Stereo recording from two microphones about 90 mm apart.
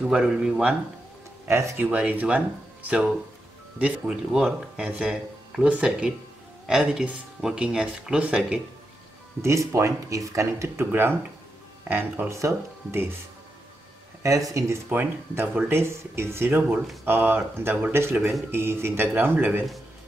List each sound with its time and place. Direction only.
0.0 s speech: 10° right (ahead or behind)
1.5 s speech: 35° right (ahead or behind)
1.8 s speech: 20° right (ahead or behind)
9.4 s speech: 35° right (ahead or behind)
12.3 s speech: 35° right (ahead or behind)
14.2 s speech: 35° right (ahead or behind)
14.9 s speech: 20° right (ahead or behind)